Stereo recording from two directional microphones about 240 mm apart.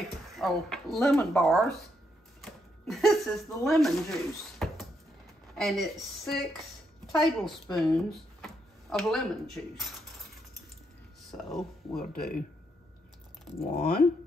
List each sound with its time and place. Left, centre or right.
0.4 s speech: centre
12.0 s speech: left
13.7 s speech: left